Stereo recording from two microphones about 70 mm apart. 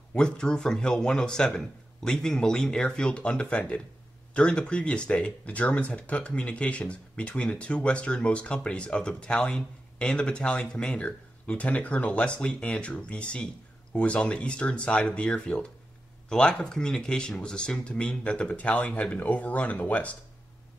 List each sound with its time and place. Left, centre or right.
0.1 s speech: centre